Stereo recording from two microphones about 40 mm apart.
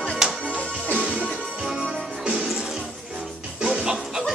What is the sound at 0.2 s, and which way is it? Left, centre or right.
Music, centre.